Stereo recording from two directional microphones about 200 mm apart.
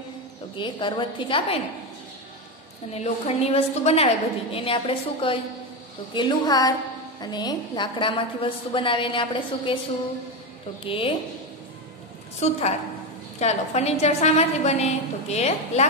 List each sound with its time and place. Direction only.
0.6 s a woman's voice: 25° left (ahead or behind)
2.9 s a woman's voice: 30° left (ahead or behind)
10.9 s a woman's voice: 25° left (ahead or behind)
12.4 s a woman's voice: 35° left (ahead or behind)